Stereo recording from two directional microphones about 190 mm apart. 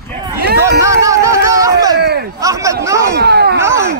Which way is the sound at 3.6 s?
15° right (ahead or behind).